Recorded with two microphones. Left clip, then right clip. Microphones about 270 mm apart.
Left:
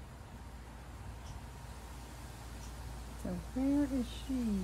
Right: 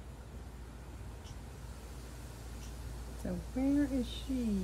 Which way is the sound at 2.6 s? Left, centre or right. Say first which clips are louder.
Even; centre.